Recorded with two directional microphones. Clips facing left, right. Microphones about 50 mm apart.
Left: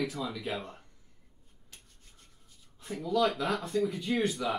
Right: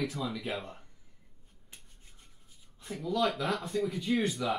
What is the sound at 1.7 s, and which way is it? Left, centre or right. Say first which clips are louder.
Rub: right 1 dB; right.